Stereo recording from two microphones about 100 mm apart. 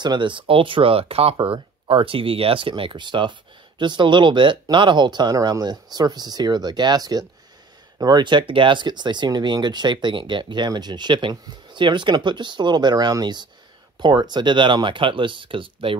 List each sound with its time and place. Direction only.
0.0 s speech: 50° right (ahead or behind); by 1.3 s 75° right (ahead or behind)
1.4 s speech: 65° right (ahead or behind)